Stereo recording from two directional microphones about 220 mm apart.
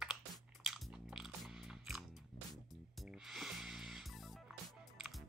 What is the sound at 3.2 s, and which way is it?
Music, centre (ahead or behind).